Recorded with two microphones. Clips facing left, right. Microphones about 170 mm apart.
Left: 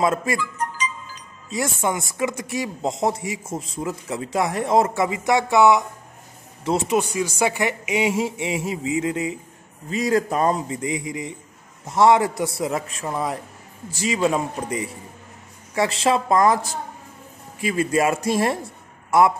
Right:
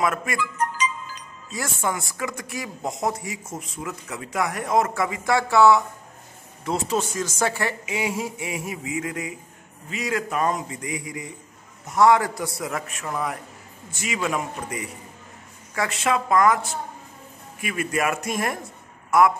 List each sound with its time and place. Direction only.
0.0 s a man's voice: 30° left (ahead or behind)
0.4 s music: 60° right (ahead or behind)
1.5 s a man's voice: 20° left (ahead or behind)
9.8 s a man's voice: 35° left (ahead or behind)